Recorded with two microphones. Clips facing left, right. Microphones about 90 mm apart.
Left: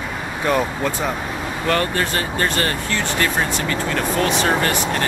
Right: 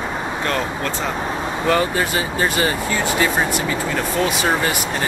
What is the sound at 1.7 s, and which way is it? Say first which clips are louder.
Speech: right 1 dB; 5° right (ahead or behind).